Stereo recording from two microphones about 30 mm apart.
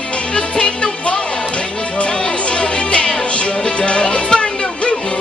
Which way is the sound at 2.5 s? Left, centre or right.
Left.